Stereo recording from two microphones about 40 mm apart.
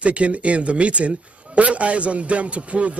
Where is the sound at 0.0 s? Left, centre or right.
Right.